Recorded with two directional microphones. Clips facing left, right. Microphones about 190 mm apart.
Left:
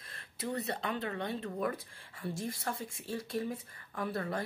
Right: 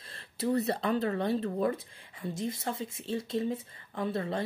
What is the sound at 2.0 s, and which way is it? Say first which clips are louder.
Speech: right 4 dB; 20° right (ahead or behind).